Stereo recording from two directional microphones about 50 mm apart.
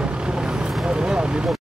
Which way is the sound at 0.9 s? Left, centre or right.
Centre.